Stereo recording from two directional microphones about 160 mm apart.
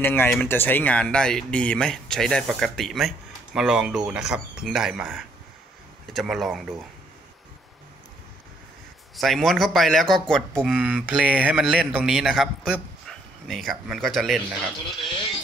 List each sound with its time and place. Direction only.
0.0 s speech: 15° left (ahead or behind)
9.1 s speech: centre (ahead or behind)
10.6 s speech: 10° right (ahead or behind)